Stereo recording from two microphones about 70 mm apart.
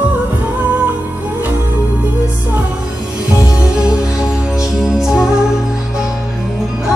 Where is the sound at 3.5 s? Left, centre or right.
Centre.